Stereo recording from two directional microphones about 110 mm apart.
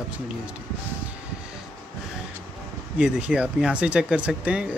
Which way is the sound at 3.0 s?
10° right (ahead or behind).